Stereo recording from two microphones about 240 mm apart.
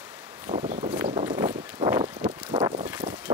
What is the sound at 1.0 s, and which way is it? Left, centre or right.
Vehicle, right.